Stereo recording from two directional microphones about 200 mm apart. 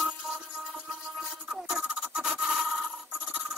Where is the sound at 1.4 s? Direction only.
5° right (ahead or behind).